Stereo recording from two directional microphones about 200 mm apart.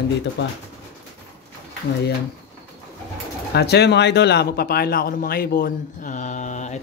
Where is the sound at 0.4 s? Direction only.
60° left (ahead or behind).